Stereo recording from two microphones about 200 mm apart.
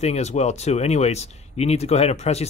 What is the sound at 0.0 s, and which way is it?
Speech, 35° left (ahead or behind).